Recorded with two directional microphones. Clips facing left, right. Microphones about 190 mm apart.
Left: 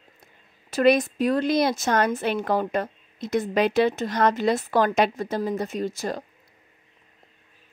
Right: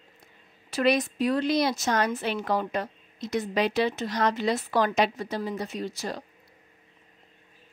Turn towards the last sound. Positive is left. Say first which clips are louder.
# left 5 dB
turn(degrees=50)  # may be behind; listen again after turning